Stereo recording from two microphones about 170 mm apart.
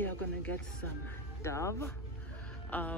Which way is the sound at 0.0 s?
10° left (ahead or behind).